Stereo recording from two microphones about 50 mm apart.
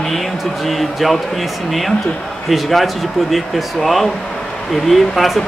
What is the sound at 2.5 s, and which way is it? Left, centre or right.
Speech, centre.